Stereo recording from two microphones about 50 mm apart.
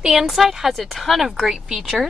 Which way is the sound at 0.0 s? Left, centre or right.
Centre.